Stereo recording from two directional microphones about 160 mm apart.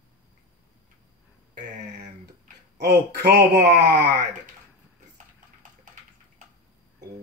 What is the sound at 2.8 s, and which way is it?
Speech, 65° right (ahead or behind).